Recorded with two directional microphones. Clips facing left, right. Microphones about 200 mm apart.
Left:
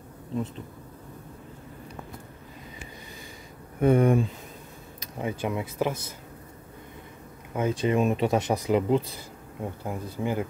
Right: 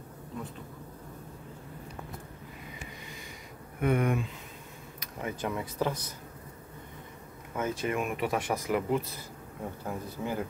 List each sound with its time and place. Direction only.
3.8 s speech: 30° left (ahead or behind)
7.5 s speech: 15° left (ahead or behind)